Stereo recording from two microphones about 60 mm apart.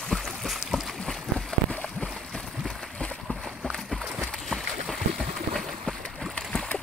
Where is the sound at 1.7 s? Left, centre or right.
Left.